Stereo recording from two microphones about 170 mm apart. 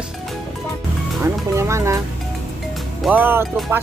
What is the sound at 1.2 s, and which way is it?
Speech, 15° right (ahead or behind).